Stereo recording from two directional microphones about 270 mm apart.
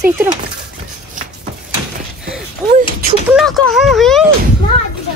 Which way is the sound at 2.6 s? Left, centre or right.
Centre.